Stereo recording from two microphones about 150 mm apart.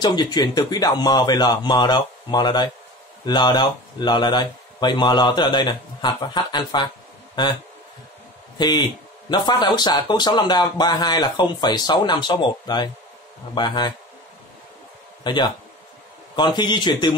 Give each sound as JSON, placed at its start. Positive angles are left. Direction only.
{"t": 0.0, "sound": "speech", "side_deg": 25}
{"t": 8.5, "sound": "speech", "side_deg": 30}
{"t": 15.2, "sound": "speech", "side_deg": 30}